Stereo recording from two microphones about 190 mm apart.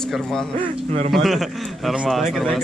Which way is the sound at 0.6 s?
30° right (ahead or behind).